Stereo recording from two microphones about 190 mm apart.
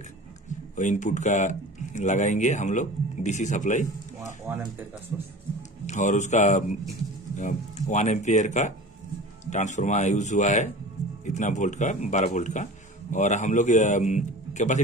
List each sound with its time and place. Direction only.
0.7 s speech: 40° left (ahead or behind)
4.5 s speech: 10° right (ahead or behind)
5.9 s speech: 40° left (ahead or behind)